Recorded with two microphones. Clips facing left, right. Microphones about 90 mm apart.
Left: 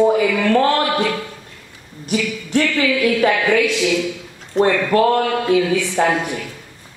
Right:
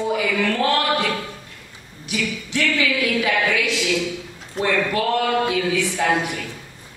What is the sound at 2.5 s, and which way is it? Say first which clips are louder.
A woman's voice: left 5 dB; 40° left (ahead or behind).